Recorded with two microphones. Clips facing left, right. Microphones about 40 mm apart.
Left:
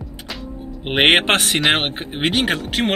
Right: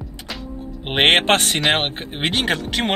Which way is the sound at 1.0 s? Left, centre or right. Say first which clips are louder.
Left 1 dB; centre.